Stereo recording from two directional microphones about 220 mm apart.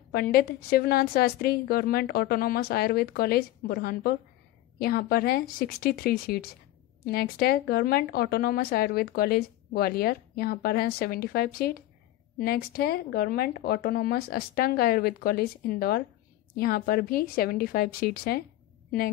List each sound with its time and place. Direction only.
0.1 s a woman's voice: 45° left (ahead or behind)